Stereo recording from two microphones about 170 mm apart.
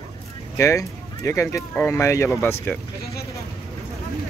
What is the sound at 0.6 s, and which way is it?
Speech, 15° left (ahead or behind).